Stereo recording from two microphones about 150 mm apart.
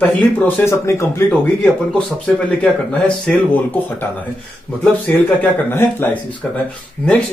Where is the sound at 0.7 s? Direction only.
20° left (ahead or behind).